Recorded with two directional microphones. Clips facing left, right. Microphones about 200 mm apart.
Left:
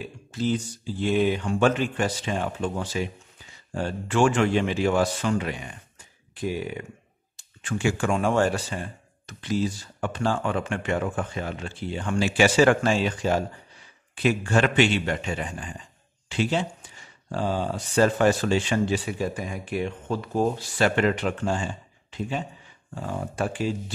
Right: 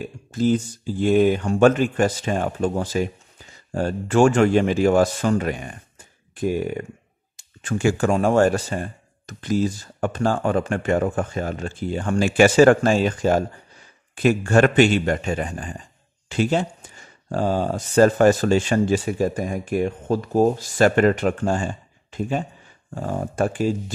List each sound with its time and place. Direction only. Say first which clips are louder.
0.0 s speech: right 6 dB; 45° right (ahead or behind)